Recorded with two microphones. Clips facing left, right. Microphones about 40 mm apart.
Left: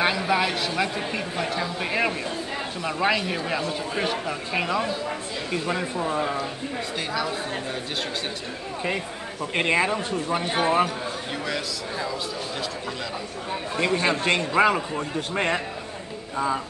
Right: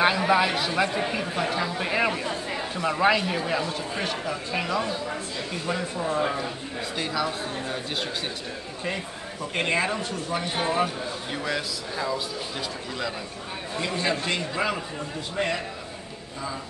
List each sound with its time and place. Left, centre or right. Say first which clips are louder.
0.3 s a man's voice: right 1 dB; centre
3.9 s speech: left 2 dB; centre
7.0 s a man's voice: right 1 dB; centre
9.5 s speech: left 3 dB; centre
9.9 s a man's voice: left 3 dB; left
11.4 s a man's voice: right 2 dB; centre
13.7 s a man's voice: left 4 dB; left